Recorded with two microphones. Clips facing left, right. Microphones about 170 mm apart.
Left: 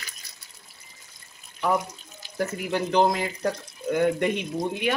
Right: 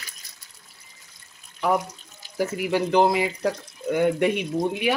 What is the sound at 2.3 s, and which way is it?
Speech, 10° right (ahead or behind).